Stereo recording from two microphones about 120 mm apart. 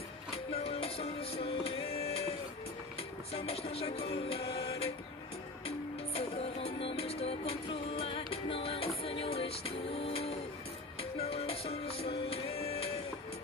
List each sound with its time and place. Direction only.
0.7 s music: 55° left (ahead or behind)
3.3 s music: 60° left (ahead or behind)